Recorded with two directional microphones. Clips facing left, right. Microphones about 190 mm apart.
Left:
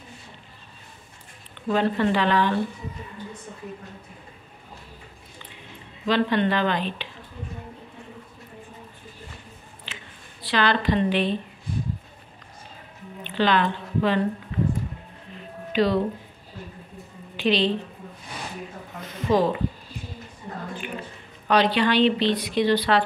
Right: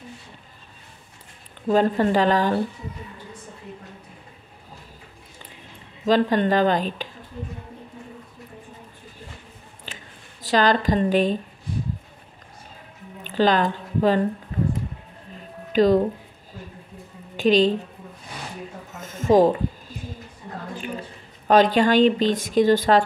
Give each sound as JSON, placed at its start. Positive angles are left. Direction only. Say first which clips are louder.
{"t": 1.7, "sound": "speech", "louder": "right 3 dB", "side_deg": -40}
{"t": 6.0, "sound": "speech", "louder": "right 3 dB", "side_deg": -40}
{"t": 9.9, "sound": "a sound", "louder": "right 2 dB", "side_deg": -45}
{"t": 10.4, "sound": "speech", "louder": "right 3 dB", "side_deg": -40}
{"t": 13.2, "sound": "speech", "louder": "right 2 dB", "side_deg": -40}
{"t": 15.7, "sound": "speech", "louder": "right 5 dB", "side_deg": -45}
{"t": 17.4, "sound": "a woman's voice", "louder": "right 5 dB", "side_deg": -45}
{"t": 18.9, "sound": "a sound", "louder": "right 4 dB", "side_deg": -45}
{"t": 21.5, "sound": "speech", "louder": "right 4 dB", "side_deg": -45}